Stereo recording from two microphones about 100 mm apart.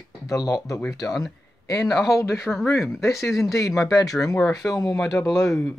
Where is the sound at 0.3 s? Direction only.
35° left (ahead or behind).